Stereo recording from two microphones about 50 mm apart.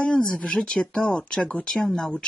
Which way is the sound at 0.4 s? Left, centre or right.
Centre.